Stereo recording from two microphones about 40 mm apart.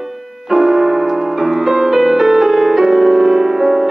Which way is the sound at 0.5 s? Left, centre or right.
Centre.